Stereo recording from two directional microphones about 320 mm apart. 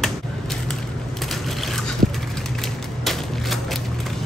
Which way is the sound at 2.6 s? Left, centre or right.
Centre.